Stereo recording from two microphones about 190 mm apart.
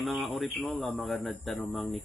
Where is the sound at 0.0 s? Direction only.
Centre (ahead or behind).